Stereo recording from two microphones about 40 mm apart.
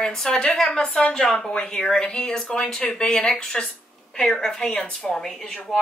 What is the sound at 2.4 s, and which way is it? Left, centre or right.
A woman's voice, left.